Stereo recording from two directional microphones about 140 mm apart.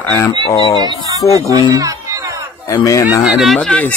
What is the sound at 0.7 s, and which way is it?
Speech, 30° right (ahead or behind).